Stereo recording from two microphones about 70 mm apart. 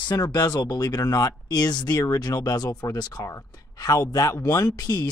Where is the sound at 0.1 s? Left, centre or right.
Left.